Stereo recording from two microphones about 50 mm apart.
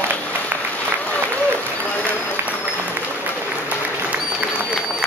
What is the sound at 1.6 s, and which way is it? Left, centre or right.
Applause, left.